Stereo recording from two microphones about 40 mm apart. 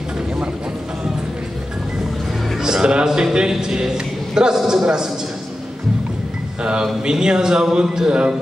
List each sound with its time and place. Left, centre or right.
2.6 s music: centre
3.3 s a man's voice: centre
6.6 s a man's voice: right